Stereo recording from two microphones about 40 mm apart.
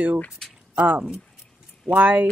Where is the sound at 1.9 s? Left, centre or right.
Right.